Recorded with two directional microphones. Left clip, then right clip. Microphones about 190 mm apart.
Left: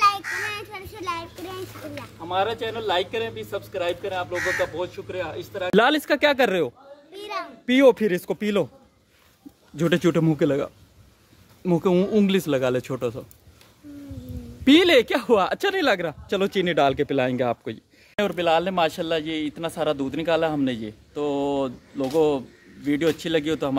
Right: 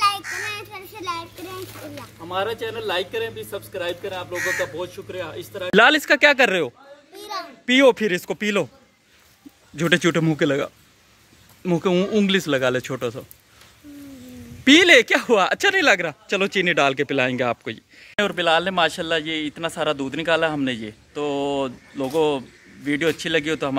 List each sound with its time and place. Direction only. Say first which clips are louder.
0.0 s a sound: left 1 dB; centre (ahead or behind)
2.1 s speech: left 1 dB; 15° left (ahead or behind)
7.2 s a sound: even; 30° left (ahead or behind)
7.6 s speech: right 1 dB; 5° left (ahead or behind)
9.8 s speech: right 2 dB; 5° left (ahead or behind)
14.6 s speech: right 4 dB; 5° left (ahead or behind)